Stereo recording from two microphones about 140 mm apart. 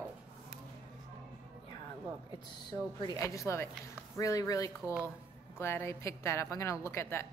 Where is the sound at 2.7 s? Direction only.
20° left (ahead or behind).